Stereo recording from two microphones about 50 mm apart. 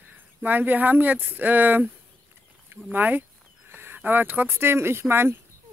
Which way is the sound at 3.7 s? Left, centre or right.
Right.